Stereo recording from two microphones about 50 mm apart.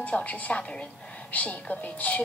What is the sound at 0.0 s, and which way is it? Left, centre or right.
A woman's voice, left.